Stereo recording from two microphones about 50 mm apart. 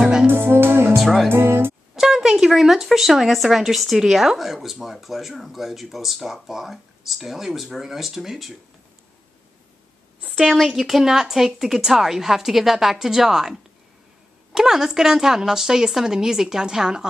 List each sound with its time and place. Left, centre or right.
0.0 s music: centre
0.3 s music: right
0.9 s music: centre
1.3 s music: right
2.0 s speech: centre
10.3 s a woman's voice: centre